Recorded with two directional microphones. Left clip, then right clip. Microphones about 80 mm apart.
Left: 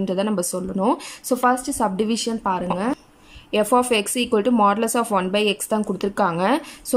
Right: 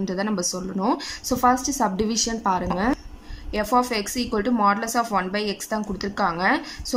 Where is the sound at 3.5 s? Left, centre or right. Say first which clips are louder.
Left 4 dB; left.